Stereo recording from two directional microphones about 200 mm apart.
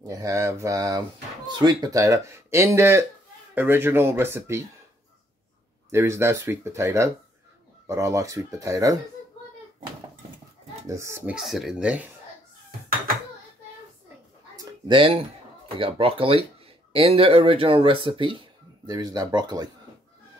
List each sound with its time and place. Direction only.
0.0 s speech: 15° right (ahead or behind)
5.9 s speech: 15° right (ahead or behind)
10.9 s speech: 15° right (ahead or behind)
14.6 s a sound: 25° right (ahead or behind)
15.8 s speech: 25° right (ahead or behind)